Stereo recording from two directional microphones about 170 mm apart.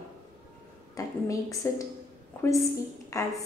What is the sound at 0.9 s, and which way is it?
Speech, 20° left (ahead or behind).